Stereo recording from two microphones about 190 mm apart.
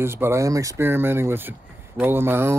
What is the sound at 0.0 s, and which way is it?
Speech, 10° right (ahead or behind).